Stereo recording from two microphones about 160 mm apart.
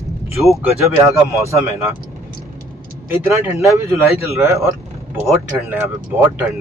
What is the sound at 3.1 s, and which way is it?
Speech, 15° right (ahead or behind).